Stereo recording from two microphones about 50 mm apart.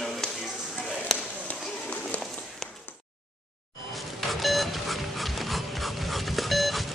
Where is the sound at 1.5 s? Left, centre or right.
Left.